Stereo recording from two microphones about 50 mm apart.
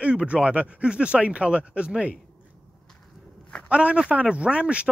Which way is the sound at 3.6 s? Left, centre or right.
Right.